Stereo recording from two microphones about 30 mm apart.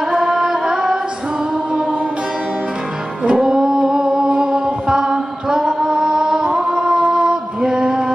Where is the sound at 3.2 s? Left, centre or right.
Right.